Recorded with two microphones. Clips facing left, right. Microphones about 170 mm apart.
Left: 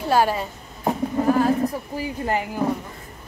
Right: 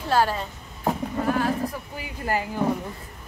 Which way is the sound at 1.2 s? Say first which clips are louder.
Left 5 dB; 30° left (ahead or behind).